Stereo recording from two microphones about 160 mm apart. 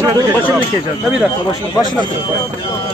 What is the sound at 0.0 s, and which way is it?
Speech, 15° right (ahead or behind).